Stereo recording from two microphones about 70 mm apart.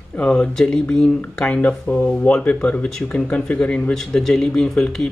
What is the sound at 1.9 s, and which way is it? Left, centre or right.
Speech, left.